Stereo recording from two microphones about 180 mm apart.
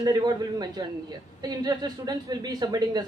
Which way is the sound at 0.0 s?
25° right (ahead or behind).